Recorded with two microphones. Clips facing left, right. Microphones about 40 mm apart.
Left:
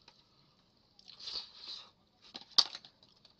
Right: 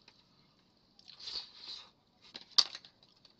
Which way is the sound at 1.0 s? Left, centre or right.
Centre.